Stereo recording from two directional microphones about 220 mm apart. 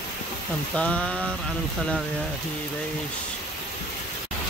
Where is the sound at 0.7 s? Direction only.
5° left (ahead or behind).